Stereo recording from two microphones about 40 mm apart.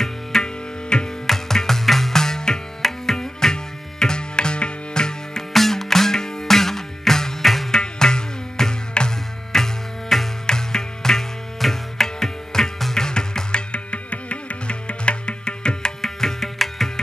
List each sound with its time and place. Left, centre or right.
0.0 s music: centre
2.8 s tabla: centre
5.5 s music: centre
16.0 s music: centre